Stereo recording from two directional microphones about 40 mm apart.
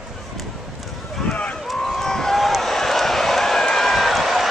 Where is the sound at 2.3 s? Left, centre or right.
Centre.